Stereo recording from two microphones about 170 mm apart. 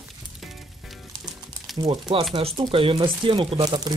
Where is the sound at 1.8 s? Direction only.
30° right (ahead or behind).